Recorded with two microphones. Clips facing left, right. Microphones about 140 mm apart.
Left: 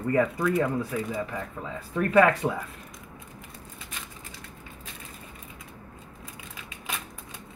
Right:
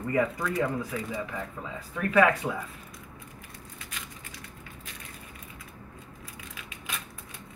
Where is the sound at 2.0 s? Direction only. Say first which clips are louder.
Left 3 dB; 35° left (ahead or behind).